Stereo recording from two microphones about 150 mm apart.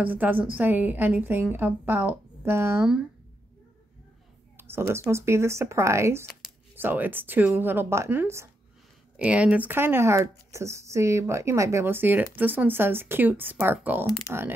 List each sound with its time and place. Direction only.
0.0 s speech: 10° right (ahead or behind)
4.6 s a sound: 15° right (ahead or behind)
5.1 s speech: 20° right (ahead or behind)
14.3 s speech: 20° left (ahead or behind)